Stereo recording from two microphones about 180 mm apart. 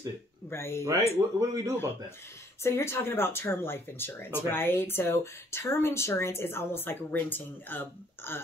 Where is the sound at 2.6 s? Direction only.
15° left (ahead or behind).